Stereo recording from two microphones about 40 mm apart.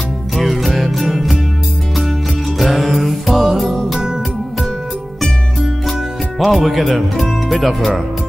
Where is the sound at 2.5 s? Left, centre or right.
Centre.